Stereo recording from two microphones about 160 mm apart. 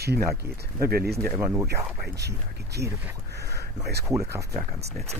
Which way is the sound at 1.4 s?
15° right (ahead or behind).